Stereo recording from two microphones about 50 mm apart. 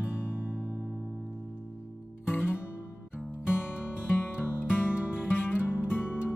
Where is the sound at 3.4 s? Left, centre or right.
Left.